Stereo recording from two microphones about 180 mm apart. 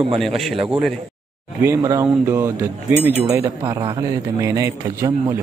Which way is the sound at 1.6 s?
15° right (ahead or behind).